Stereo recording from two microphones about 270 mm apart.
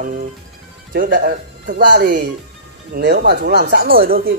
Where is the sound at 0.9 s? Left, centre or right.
Right.